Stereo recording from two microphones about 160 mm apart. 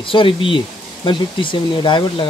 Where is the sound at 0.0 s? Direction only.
30° left (ahead or behind).